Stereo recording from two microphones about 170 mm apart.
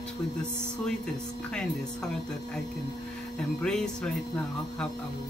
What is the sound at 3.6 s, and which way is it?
Speech, 5° left (ahead or behind).